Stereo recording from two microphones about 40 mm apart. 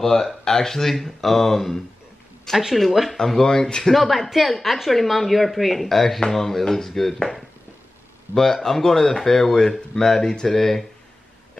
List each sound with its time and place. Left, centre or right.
0.0 s speech: centre
2.5 s speech: centre
2.8 s speech: centre
3.9 s speech: centre
8.4 s speech: centre